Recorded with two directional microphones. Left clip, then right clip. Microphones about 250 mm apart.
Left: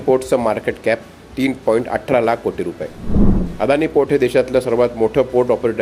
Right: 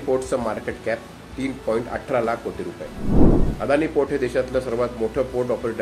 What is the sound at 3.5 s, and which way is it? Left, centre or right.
Speech, left.